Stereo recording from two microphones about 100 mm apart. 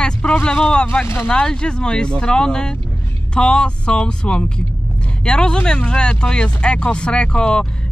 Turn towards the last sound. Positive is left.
turn(degrees=10)  # may be behind; listen again after turning